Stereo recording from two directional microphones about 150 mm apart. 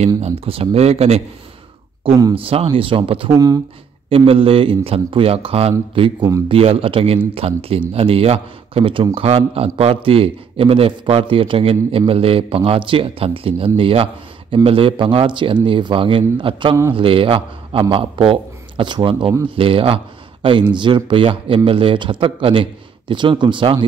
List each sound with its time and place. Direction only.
0.5 s speech: 40° right (ahead or behind)
2.3 s a man's voice: 40° right (ahead or behind)
3.3 s speech: 25° right (ahead or behind)
4.3 s a man's voice: 40° right (ahead or behind)